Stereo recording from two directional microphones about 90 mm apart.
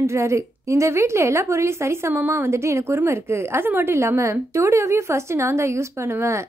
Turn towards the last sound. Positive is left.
turn(degrees=-35)  # may be behind; listen again after turning